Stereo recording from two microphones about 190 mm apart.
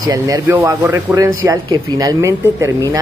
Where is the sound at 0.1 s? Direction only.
15° right (ahead or behind).